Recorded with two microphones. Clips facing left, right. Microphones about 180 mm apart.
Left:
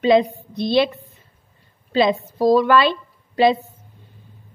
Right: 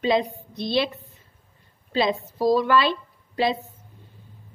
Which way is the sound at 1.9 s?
70° left (ahead or behind).